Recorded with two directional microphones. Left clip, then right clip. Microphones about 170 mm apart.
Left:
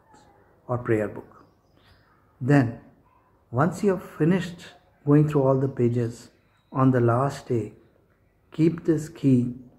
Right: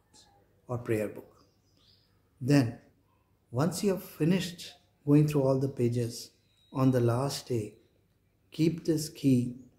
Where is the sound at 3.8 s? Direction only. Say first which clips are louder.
Left 6 dB; 40° right (ahead or behind).